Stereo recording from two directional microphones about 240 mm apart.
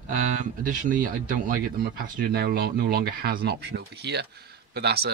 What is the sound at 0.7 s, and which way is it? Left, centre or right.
Speech, right.